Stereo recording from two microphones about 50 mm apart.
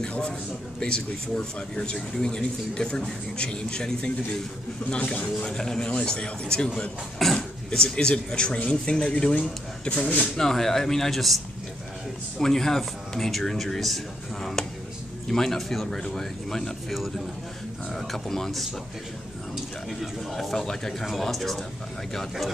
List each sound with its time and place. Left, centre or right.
0.7 s speech: centre
7.2 s a sound: centre
7.8 s speech: centre
10.3 s speech: centre
20.0 s speech: centre